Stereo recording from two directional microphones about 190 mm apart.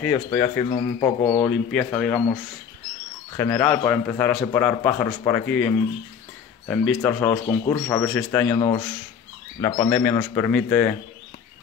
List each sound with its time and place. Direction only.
0.0 s speech: 10° left (ahead or behind)
1.2 s speech: 10° left (ahead or behind)
7.0 s speech: 15° left (ahead or behind)
8.5 s speech: 20° left (ahead or behind)